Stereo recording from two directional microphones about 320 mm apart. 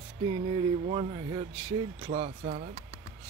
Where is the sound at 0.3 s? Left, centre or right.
Centre.